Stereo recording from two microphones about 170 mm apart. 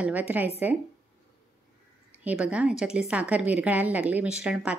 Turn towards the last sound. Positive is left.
turn(degrees=-5)  # may be behind; listen again after turning